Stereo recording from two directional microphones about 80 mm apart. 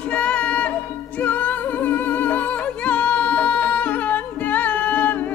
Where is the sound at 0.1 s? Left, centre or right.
Centre.